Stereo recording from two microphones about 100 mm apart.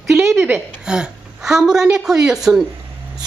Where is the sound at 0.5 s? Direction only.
10° right (ahead or behind).